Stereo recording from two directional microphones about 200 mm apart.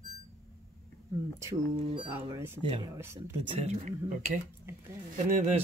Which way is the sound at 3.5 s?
35° right (ahead or behind).